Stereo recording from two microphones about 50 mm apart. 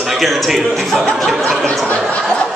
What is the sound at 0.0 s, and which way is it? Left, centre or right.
A man's voice, centre.